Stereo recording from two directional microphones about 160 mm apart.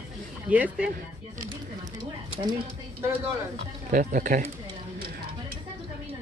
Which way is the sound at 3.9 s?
55° right (ahead or behind).